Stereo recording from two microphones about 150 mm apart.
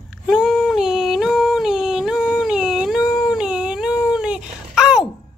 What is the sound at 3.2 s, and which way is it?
Cat, 5° right (ahead or behind).